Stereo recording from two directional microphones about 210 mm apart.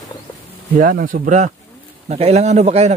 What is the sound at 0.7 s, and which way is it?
A man's voice, 40° right (ahead or behind).